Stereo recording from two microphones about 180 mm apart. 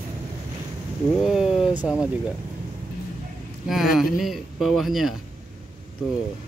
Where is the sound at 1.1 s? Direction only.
Centre (ahead or behind).